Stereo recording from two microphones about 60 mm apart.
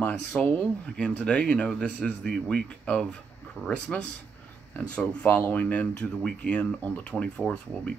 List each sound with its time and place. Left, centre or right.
0.4 s speech: left